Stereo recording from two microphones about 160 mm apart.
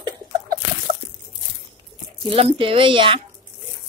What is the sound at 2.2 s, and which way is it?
Speech, 35° right (ahead or behind).